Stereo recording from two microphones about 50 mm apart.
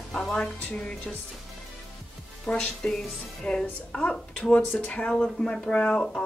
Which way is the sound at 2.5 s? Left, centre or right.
Centre.